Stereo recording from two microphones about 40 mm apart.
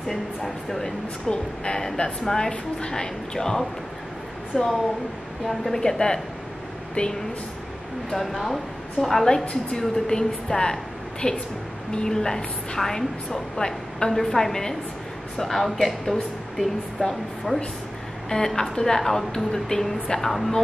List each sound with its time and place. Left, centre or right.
0.1 s a woman's voice: centre
1.3 s speech: left
2.2 s a woman's voice: centre
4.5 s a woman's voice: centre
5.8 s a woman's voice: centre
7.0 s speech: left
8.1 s a woman's voice: centre